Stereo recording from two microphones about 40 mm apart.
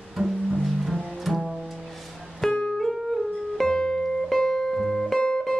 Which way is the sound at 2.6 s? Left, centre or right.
Centre.